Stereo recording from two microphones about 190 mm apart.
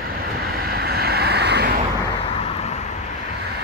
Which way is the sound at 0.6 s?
55° right (ahead or behind).